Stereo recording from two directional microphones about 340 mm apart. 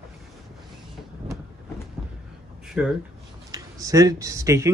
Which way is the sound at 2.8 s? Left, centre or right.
Centre.